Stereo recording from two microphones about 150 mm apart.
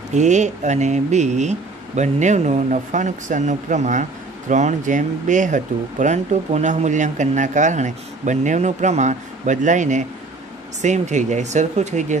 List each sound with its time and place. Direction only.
0.1 s speech: 50° right (ahead or behind)